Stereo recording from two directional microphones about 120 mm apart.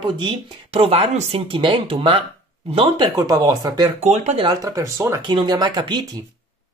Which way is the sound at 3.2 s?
30° right (ahead or behind).